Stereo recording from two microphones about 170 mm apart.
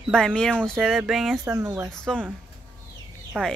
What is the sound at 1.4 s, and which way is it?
Speech, 15° right (ahead or behind).